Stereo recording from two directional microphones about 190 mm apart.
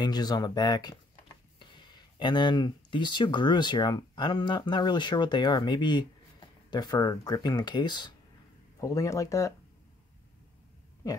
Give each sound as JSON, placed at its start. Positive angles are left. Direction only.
{"t": 0.0, "sound": "speech", "side_deg": 20}